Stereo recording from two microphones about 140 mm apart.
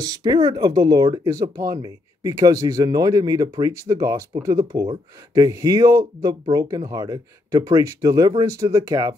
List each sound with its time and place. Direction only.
0.0 s speech: 30° right (ahead or behind)